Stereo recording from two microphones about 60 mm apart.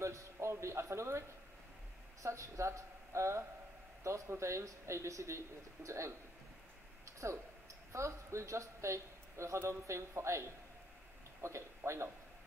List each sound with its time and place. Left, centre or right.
0.0 s a sound: right
2.2 s speech: right
7.2 s speech: right
11.4 s speech: right